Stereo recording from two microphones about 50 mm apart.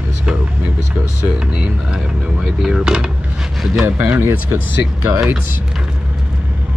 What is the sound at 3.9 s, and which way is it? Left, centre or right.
Speech, right.